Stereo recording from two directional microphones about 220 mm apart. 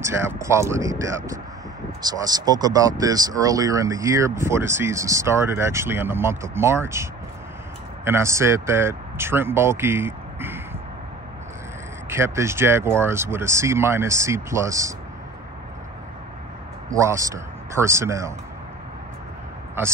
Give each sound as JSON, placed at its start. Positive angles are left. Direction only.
{"t": 0.0, "sound": "speech", "side_deg": -10}
{"t": 12.1, "sound": "speech", "side_deg": -10}
{"t": 16.9, "sound": "speech", "side_deg": -15}